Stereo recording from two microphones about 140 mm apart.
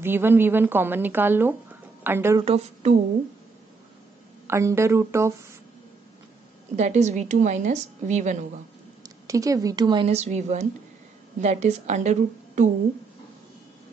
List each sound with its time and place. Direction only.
0.0 s a woman's voice: 15° right (ahead or behind)
2.4 s speech: 50° right (ahead or behind)
4.5 s speech: 20° right (ahead or behind)
6.8 s a woman's voice: 55° right (ahead or behind)
9.0 s speech: 25° right (ahead or behind)
10.0 s a woman's voice: 55° right (ahead or behind)